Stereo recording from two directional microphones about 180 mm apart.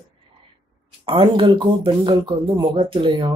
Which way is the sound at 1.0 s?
30° right (ahead or behind).